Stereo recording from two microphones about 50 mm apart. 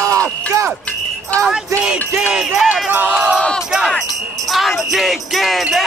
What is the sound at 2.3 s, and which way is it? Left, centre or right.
Music, centre.